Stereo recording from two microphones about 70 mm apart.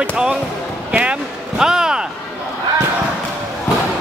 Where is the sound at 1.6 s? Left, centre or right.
Centre.